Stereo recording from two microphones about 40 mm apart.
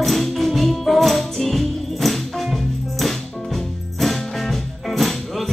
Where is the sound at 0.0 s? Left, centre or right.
Centre.